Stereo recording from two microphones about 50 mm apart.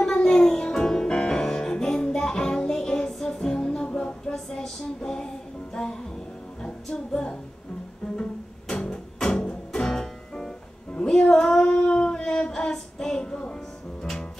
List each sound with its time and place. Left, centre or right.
0.0 s music: centre